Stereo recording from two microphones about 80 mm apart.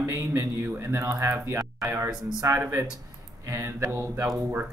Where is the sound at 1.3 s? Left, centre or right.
Right.